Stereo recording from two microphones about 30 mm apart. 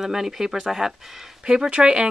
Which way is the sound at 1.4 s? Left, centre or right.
Right.